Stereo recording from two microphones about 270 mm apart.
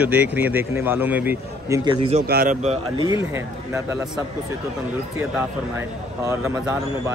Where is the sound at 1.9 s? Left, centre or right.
Right.